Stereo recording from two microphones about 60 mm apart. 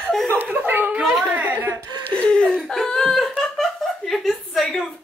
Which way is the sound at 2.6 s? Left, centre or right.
Centre.